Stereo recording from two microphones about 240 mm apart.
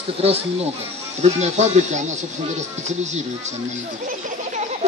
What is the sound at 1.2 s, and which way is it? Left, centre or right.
Speech, right.